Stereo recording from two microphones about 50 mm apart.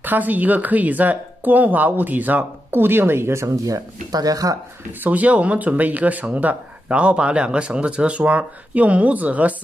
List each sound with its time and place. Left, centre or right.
0.0 s speech: right
5.0 s speech: right